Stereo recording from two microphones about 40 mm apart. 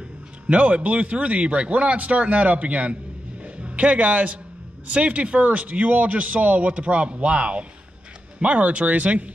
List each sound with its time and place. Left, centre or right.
0.5 s speech: right
3.4 s a sound: right
4.9 s speech: right